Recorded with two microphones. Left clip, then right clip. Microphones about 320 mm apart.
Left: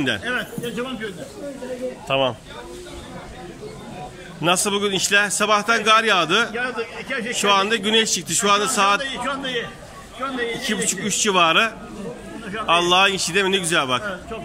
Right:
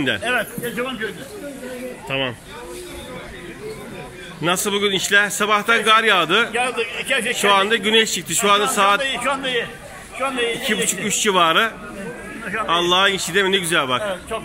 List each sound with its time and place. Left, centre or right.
0.0 s a man's voice: centre
2.0 s a man's voice: centre
4.6 s a man's voice: centre